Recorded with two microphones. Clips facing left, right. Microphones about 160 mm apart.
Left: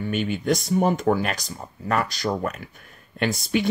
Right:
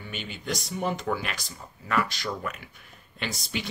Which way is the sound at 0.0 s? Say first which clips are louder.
Left 12 dB; 50° left (ahead or behind).